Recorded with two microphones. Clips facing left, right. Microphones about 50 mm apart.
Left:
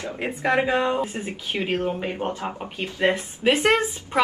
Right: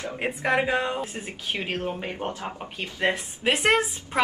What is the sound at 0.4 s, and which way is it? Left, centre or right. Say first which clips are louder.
Speech: left 2 dB; right.